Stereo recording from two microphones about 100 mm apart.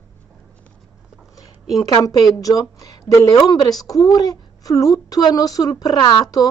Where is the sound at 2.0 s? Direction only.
35° left (ahead or behind).